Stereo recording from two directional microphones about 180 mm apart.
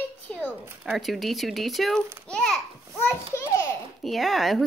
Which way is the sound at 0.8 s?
Centre (ahead or behind).